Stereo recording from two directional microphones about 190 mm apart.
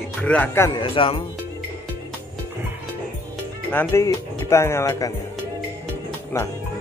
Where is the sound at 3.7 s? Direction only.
10° left (ahead or behind).